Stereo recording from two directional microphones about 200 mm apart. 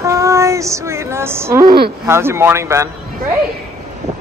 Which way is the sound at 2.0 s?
10° right (ahead or behind).